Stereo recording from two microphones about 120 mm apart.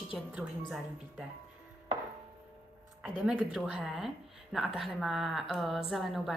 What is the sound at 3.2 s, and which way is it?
A woman's voice, 5° right (ahead or behind).